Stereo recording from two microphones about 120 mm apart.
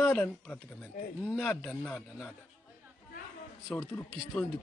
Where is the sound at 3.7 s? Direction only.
20° left (ahead or behind).